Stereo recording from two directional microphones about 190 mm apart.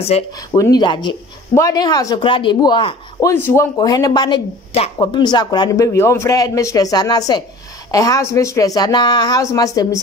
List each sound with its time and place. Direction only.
0.1 s speech: 30° left (ahead or behind)
0.5 s speech: 20° left (ahead or behind)